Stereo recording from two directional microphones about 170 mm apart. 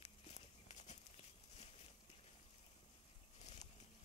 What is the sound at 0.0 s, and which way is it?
Walk, 40° left (ahead or behind).